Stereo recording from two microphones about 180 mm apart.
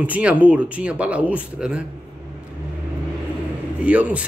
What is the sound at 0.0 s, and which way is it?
Speech, 5° right (ahead or behind).